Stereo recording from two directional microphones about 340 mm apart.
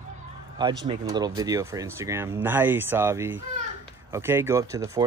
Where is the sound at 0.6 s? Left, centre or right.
Centre.